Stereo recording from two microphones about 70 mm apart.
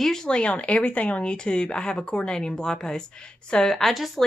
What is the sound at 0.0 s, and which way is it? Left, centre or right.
A woman's voice, centre.